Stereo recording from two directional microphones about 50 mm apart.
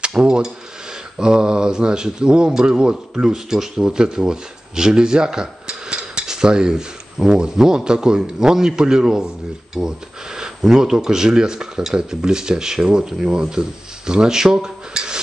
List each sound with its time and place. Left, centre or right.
0.0 s speech: centre